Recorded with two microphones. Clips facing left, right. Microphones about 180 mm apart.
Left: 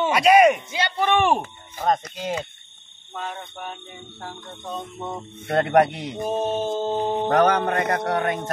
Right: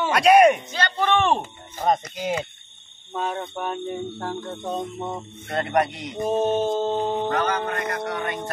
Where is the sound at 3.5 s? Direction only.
45° right (ahead or behind).